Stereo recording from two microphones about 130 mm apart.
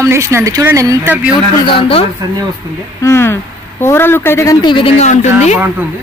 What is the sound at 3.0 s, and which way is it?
A woman's voice, 20° left (ahead or behind).